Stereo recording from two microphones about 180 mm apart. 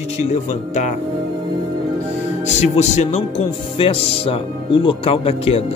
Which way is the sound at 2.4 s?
40° left (ahead or behind).